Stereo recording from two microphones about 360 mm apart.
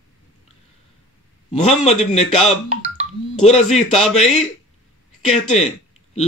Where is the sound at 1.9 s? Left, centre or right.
Centre.